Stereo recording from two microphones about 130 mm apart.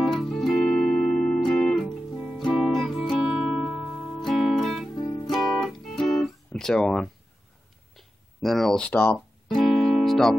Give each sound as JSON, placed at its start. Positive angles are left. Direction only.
{"t": 0.0, "sound": "music", "side_deg": 0}
{"t": 4.9, "sound": "guitar", "side_deg": 30}
{"t": 5.3, "sound": "guitar", "side_deg": 0}
{"t": 7.9, "sound": "a sound", "side_deg": 0}
{"t": 9.7, "sound": "music", "side_deg": 0}